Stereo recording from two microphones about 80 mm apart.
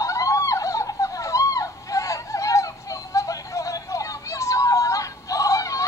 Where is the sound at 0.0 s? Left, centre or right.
Left.